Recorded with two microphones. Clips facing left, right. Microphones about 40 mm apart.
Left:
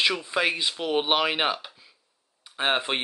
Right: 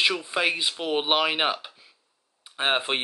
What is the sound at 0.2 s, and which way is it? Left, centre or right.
Speech, centre.